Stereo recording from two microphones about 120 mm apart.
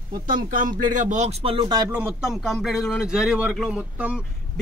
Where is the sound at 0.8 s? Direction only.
90° right; by 1.7 s 50° right (ahead or behind).